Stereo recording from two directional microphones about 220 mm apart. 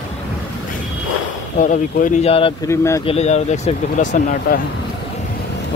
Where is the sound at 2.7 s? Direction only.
15° left (ahead or behind).